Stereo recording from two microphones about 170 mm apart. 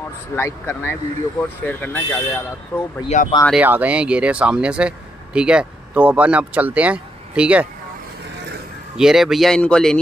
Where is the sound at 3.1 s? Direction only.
45° left (ahead or behind).